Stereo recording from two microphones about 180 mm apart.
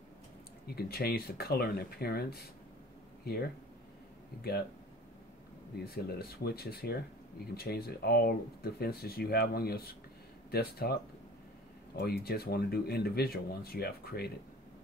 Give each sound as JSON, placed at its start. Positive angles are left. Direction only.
{"t": 0.7, "sound": "speech", "side_deg": 60}
{"t": 4.4, "sound": "speech", "side_deg": 60}
{"t": 5.9, "sound": "speech", "side_deg": 60}